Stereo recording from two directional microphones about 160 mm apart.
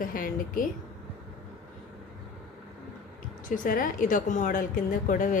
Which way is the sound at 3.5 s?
55° left (ahead or behind).